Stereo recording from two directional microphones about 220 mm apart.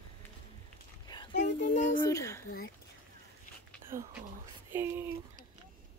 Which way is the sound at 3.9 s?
10° right (ahead or behind).